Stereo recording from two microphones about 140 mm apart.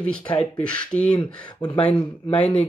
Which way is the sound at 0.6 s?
10° left (ahead or behind).